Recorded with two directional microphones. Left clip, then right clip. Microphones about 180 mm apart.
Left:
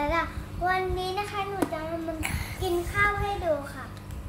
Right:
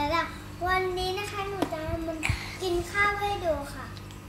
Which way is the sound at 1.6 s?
35° left (ahead or behind).